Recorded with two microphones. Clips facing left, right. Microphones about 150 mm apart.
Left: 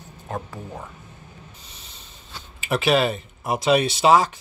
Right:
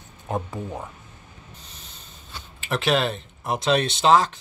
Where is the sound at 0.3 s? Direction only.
20° right (ahead or behind).